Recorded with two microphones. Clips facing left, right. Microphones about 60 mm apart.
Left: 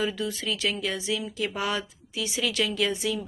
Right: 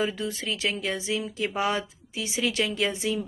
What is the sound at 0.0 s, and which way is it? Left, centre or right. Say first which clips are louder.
Speech: even; right.